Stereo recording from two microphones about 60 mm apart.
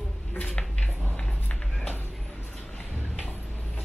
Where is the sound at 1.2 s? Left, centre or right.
Centre.